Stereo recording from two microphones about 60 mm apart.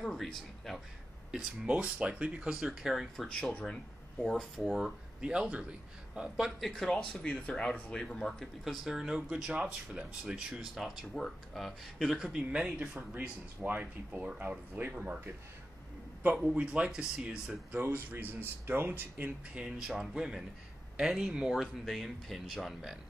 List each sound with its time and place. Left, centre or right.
0.0 s speech: centre
1.3 s speech: centre
2.6 s speech: centre
3.3 s speech: centre
5.2 s speech: centre
6.7 s speech: centre
8.6 s speech: centre
10.7 s speech: centre
12.4 s speech: centre
16.5 s speech: centre
17.6 s speech: right
19.5 s speech: centre